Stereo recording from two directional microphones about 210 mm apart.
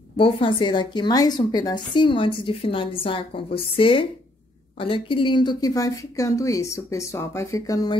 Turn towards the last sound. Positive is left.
turn(degrees=15)  # may be behind; listen again after turning